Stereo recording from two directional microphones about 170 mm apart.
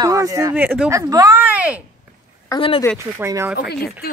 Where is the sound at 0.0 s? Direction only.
20° right (ahead or behind).